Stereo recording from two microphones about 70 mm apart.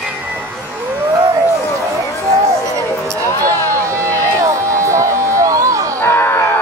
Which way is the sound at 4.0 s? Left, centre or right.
Right.